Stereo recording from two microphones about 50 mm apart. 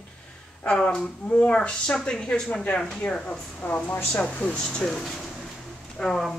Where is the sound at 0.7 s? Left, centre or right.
Centre.